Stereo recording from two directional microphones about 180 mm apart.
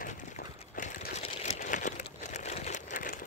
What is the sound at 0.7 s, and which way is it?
Crumpling, 40° left (ahead or behind).